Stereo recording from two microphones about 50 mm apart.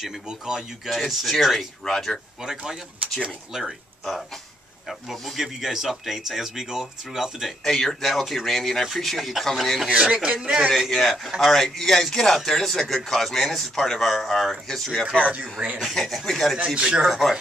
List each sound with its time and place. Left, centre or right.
0.0 s speech: centre
0.8 s a man's voice: centre
2.4 s speech: centre
4.8 s a man's voice: centre
7.6 s a man's voice: centre
9.8 s speech: right
10.7 s a man's voice: centre
16.7 s speech: centre
17.0 s a man's voice: centre